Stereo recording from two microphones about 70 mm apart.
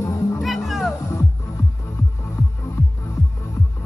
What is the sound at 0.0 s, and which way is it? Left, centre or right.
Music, left.